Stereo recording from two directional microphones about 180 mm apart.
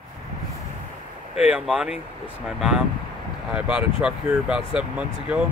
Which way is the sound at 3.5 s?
5° right (ahead or behind).